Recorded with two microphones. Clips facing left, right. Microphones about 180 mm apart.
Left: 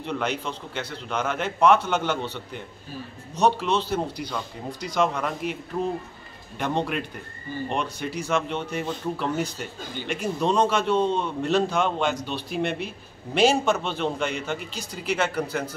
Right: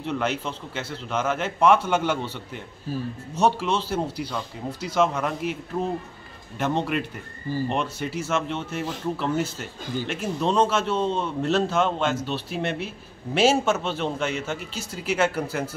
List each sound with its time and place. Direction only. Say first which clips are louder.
0.0 s a man's voice: right 1 dB; 5° right (ahead or behind)
6.6 s a man's voice: right 1 dB; 5° right (ahead or behind)